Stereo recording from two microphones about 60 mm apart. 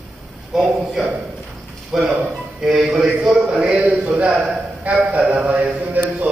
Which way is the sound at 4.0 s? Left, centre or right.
Right.